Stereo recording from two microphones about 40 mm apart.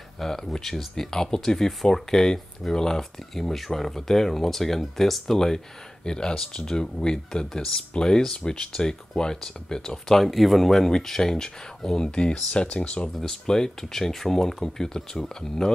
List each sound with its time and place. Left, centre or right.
0.2 s speech: centre
10.2 s speech: centre; by 13.1 s left
13.2 s speech: centre